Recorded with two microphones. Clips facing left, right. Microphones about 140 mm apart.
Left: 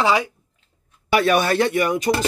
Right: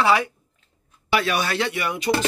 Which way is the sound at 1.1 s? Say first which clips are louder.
Left 5 dB; 50° left (ahead or behind).